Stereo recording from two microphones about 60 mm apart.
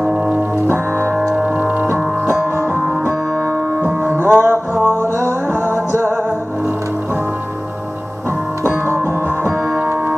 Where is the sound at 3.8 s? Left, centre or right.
Right.